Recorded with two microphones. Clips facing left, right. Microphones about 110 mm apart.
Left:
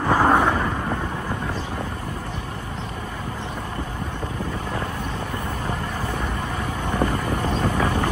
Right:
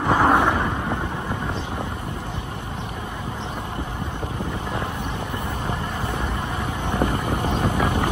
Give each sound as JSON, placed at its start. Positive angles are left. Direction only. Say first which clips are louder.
{"t": 0.0, "sound": "vehicle", "louder": "even", "side_deg": -20}
{"t": 6.9, "sound": "vehicle", "louder": "even", "side_deg": -20}